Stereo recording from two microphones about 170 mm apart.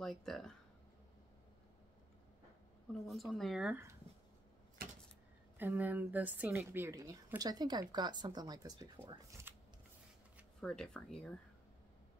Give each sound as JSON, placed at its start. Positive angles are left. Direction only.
{"t": 0.0, "sound": "speech", "side_deg": 0}
{"t": 2.9, "sound": "speech", "side_deg": 0}
{"t": 5.6, "sound": "a woman's voice", "side_deg": -10}
{"t": 10.6, "sound": "speech", "side_deg": 5}